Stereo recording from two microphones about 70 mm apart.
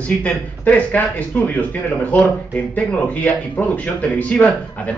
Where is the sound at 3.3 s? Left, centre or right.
Left.